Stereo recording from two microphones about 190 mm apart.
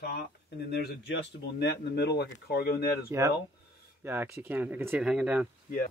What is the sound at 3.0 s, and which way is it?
Speech, 15° right (ahead or behind).